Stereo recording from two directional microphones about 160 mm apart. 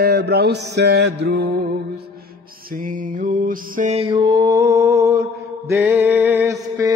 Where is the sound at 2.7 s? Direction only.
55° right (ahead or behind).